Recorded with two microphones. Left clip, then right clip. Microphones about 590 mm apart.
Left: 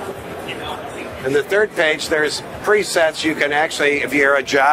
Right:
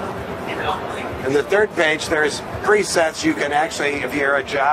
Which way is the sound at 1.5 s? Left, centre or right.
Left.